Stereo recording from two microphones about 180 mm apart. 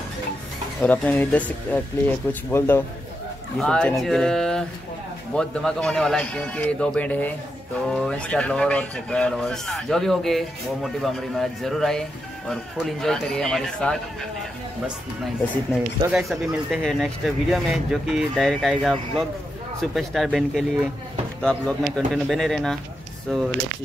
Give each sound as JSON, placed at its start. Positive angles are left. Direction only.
{"t": 0.8, "sound": "speech", "side_deg": 10}
{"t": 16.1, "sound": "speech", "side_deg": 0}